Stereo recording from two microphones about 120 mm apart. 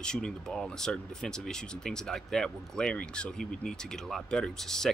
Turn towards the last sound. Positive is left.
turn(degrees=5)  # may be behind; listen again after turning